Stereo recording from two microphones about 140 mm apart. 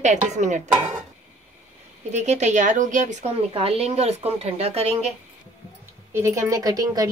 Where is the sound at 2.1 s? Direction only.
55° right (ahead or behind).